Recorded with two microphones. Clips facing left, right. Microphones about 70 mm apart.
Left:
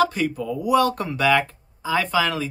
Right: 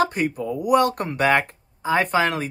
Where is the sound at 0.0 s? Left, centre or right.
Right.